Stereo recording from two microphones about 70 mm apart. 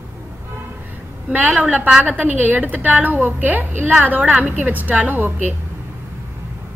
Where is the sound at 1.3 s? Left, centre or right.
Right.